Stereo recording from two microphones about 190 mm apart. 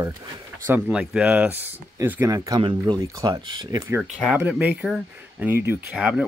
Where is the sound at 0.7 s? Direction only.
5° right (ahead or behind).